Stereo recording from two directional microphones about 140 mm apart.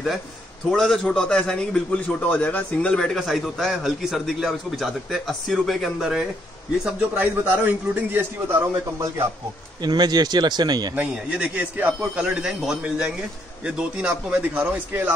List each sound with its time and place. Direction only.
0.7 s a man's voice: 5° left (ahead or behind); by 9.3 s 15° right (ahead or behind)
9.8 s speech: 30° right (ahead or behind)
11.0 s a man's voice: 10° right (ahead or behind)